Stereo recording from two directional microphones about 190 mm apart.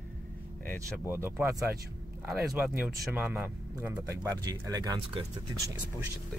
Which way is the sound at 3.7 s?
20° right (ahead or behind).